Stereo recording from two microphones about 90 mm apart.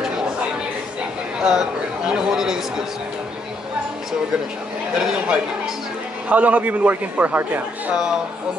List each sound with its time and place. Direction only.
1.4 s speech: 10° right (ahead or behind)
4.9 s a man's voice: 10° right (ahead or behind)
7.9 s a man's voice: 5° right (ahead or behind)